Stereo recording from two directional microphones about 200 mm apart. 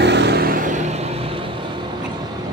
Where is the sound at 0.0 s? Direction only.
60° right (ahead or behind); by 0.7 s 45° right (ahead or behind).